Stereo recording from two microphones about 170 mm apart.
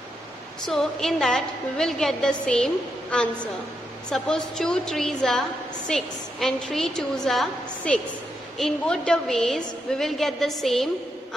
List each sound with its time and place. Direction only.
0.7 s a woman's voice: centre (ahead or behind)